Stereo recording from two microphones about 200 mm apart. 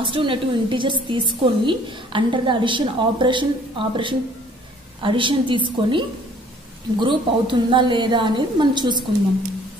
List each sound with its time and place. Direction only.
0.1 s a woman's voice: 25° right (ahead or behind)